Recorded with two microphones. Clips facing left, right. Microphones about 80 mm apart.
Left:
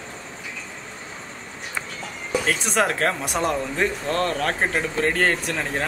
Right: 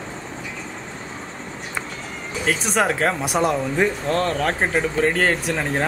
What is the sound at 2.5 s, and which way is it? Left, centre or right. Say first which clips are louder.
Speech: right 3 dB; centre.